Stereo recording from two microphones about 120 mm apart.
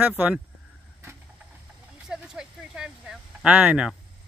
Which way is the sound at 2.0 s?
5° right (ahead or behind).